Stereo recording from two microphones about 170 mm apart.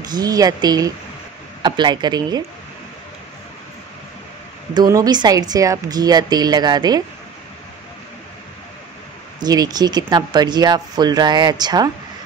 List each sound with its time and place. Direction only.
0.0 s speech: 25° right (ahead or behind)
4.7 s speech: 20° right (ahead or behind)
9.4 s speech: 20° right (ahead or behind)